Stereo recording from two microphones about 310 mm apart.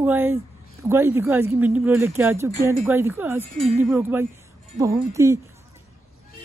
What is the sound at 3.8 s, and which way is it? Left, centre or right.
Speech, centre.